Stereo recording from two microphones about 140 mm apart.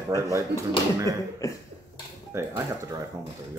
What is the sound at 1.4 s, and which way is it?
Speech, 25° left (ahead or behind).